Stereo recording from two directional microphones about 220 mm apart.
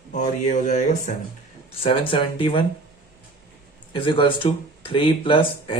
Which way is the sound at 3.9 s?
20° left (ahead or behind).